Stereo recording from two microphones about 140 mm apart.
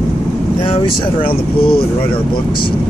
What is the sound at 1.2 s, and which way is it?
Speech, 40° left (ahead or behind).